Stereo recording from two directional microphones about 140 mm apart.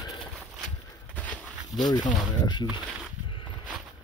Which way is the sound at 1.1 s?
10° left (ahead or behind).